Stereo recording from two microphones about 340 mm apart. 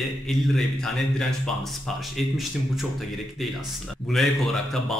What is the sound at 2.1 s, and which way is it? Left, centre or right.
Speech, centre.